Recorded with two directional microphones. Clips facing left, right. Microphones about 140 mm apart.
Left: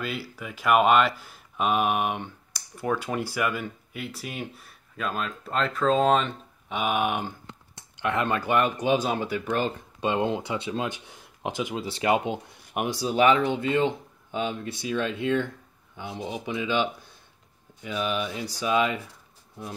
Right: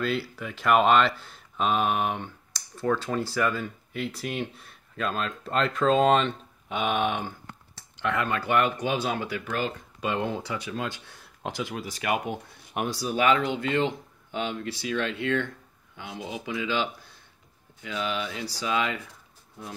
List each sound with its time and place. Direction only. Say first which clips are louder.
0.0 s speech: right 4 dB; 5° left (ahead or behind)
8.0 s speech: left 2 dB; 25° left (ahead or behind)
16.4 s speech: left 2 dB; 20° left (ahead or behind)